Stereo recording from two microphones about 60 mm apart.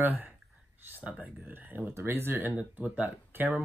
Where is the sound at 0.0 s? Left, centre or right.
Right.